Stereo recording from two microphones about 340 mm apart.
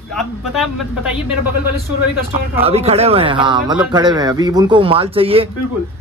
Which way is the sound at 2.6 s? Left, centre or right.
Centre.